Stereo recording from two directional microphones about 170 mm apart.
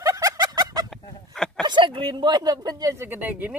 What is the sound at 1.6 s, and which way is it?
Speech, 25° right (ahead or behind).